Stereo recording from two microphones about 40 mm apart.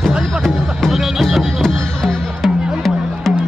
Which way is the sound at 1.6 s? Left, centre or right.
Centre.